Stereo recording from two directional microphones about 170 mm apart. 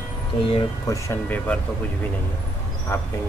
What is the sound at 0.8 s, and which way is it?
Speech, 15° left (ahead or behind).